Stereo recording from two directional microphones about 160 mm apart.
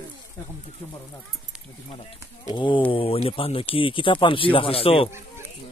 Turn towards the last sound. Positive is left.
turn(degrees=35)  # may be behind; listen again after turning